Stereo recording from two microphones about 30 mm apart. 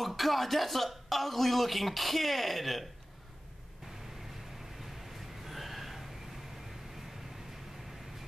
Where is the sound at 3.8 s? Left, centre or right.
Centre.